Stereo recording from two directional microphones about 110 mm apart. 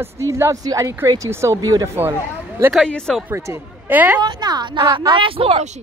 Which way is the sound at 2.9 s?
5° left (ahead or behind).